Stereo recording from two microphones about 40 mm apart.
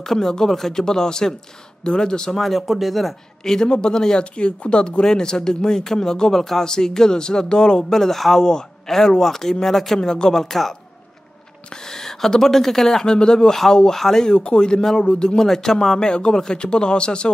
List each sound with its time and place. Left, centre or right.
0.0 s speech: centre
2.3 s speech: centre
3.6 s speech: left; by 9.9 s centre
9.9 s speech: centre
13.0 s speech: centre
14.2 s speech: left